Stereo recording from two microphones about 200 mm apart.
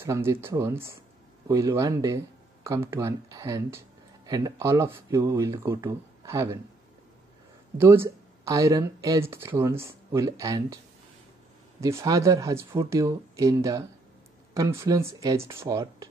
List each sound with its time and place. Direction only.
0.0 s speech: 15° right (ahead or behind)
7.8 s speech: 10° right (ahead or behind)
11.8 s speech: 15° right (ahead or behind)